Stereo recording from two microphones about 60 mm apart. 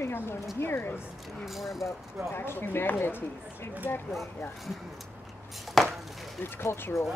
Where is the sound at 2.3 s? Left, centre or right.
Left.